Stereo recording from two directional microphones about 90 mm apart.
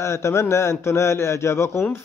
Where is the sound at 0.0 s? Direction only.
30° left (ahead or behind).